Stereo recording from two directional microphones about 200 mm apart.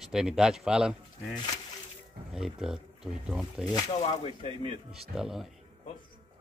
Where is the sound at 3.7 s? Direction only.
25° left (ahead or behind).